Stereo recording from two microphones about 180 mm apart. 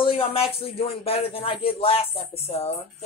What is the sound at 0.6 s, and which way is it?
Speech, 35° left (ahead or behind).